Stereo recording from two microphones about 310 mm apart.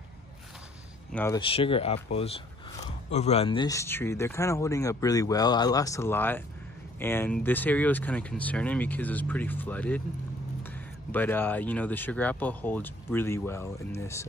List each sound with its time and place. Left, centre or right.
1.1 s speech: centre